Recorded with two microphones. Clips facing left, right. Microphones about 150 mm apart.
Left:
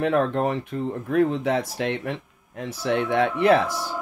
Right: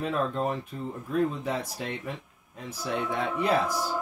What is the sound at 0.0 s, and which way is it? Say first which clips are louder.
Speech: left 7 dB; 75° left (ahead or behind).